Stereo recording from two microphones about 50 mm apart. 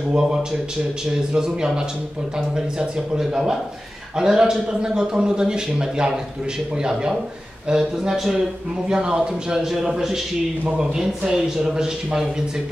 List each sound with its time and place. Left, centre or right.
0.1 s a man's voice: centre